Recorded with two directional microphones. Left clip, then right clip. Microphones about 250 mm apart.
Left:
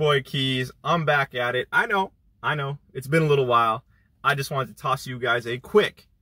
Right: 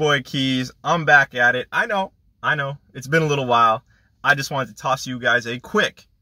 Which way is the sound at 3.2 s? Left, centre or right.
Centre.